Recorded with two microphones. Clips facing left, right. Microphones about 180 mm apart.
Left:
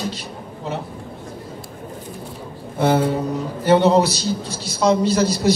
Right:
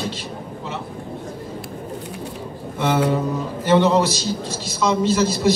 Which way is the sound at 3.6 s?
35° left (ahead or behind).